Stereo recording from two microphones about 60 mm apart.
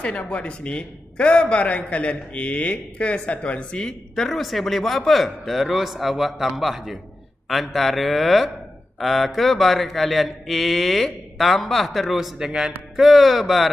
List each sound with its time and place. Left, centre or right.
0.0 s a man's voice: left; by 13.7 s centre